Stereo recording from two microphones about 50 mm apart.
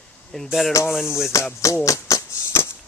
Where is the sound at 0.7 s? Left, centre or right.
Left.